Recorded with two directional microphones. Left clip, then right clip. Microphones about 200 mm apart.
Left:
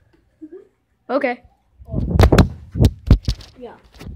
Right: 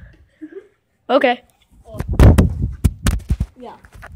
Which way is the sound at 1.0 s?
5° right (ahead or behind).